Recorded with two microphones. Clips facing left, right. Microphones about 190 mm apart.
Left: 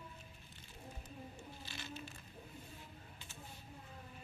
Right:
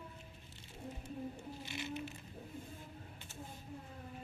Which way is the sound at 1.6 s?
20° right (ahead or behind).